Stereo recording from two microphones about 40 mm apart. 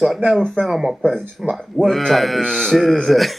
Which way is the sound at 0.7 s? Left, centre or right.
Centre.